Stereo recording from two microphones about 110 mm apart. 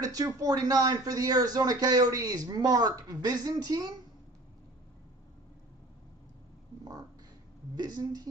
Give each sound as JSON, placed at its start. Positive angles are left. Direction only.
{"t": 0.0, "sound": "speech", "side_deg": -35}
{"t": 6.8, "sound": "a sound", "side_deg": -35}
{"t": 7.7, "sound": "speech", "side_deg": -35}